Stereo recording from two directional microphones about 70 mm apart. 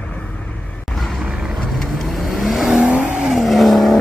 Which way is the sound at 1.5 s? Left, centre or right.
Centre.